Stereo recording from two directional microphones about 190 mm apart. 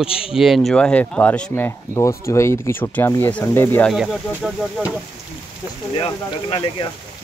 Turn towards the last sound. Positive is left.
turn(degrees=25)  # may be behind; listen again after turning